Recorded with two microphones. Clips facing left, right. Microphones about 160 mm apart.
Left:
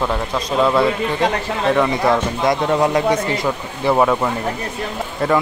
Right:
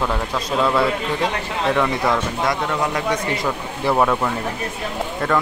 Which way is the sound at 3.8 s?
5° left (ahead or behind).